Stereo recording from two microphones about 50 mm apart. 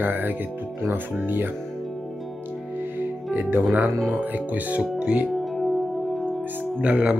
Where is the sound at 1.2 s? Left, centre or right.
Right.